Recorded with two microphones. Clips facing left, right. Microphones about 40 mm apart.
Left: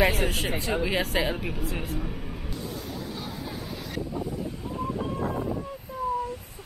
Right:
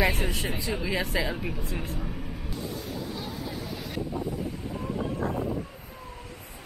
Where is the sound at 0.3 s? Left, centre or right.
Left.